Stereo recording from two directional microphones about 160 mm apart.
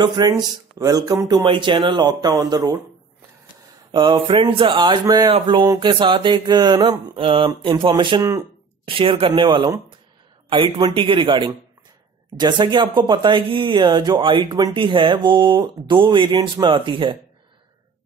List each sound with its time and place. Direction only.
0.0 s speech: 30° right (ahead or behind)
3.9 s speech: 30° right (ahead or behind)
8.2 s speech: 20° right (ahead or behind)
8.8 s speech: 35° right (ahead or behind)